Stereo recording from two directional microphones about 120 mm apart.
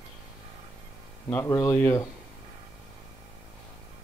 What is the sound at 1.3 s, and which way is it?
Speech, 25° left (ahead or behind).